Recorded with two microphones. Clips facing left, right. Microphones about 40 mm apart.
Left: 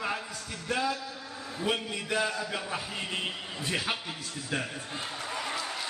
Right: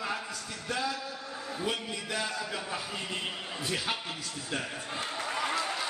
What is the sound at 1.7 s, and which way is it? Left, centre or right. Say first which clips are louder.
A man's voice: left 5 dB; left.